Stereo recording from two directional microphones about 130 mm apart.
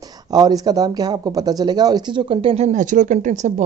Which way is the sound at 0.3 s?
30° right (ahead or behind).